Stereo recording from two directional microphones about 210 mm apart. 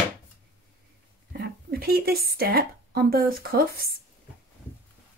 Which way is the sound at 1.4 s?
45° right (ahead or behind).